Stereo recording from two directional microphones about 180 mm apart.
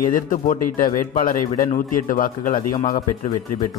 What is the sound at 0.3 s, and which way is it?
A man's voice, 50° left (ahead or behind).